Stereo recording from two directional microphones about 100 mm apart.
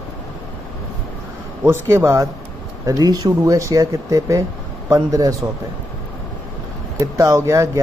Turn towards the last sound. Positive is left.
turn(degrees=-30)  # may be behind; listen again after turning